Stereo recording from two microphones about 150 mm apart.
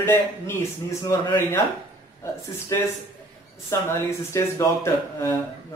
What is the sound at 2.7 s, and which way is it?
Speech, 20° left (ahead or behind).